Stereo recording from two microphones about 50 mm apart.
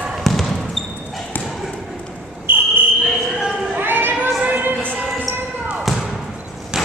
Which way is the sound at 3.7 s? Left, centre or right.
Right.